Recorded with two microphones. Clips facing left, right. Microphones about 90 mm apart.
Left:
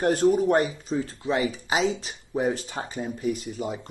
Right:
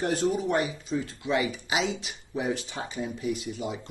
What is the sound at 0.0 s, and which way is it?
Speech, 45° left (ahead or behind).